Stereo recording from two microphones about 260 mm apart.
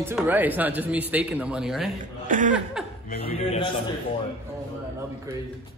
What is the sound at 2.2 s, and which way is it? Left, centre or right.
Speech, right.